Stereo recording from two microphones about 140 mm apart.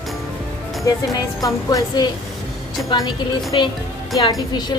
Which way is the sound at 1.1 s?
25° left (ahead or behind).